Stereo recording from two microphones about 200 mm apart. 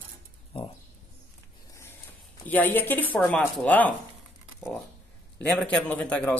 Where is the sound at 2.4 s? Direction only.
10° left (ahead or behind).